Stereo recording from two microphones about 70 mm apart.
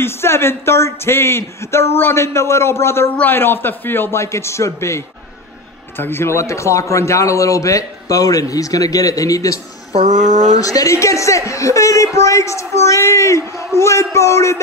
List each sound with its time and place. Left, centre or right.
0.0 s a man's voice: left
10.6 s speech: left
10.9 s a man's voice: left